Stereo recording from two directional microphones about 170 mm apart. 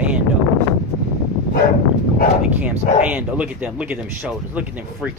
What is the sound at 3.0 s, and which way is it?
Speech, 10° right (ahead or behind).